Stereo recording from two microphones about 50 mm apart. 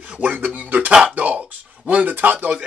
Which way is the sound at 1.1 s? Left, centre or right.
Right.